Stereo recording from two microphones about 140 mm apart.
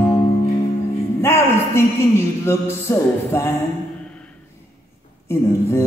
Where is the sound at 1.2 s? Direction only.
20° left (ahead or behind).